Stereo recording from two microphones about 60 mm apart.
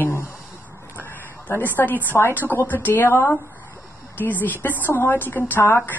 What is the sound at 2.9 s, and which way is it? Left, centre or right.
Speech, left.